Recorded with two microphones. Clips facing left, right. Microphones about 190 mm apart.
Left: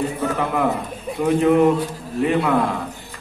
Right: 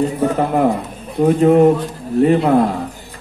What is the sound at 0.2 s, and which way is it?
A man's voice, 35° right (ahead or behind).